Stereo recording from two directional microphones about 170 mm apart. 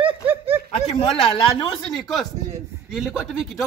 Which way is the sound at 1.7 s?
5° left (ahead or behind).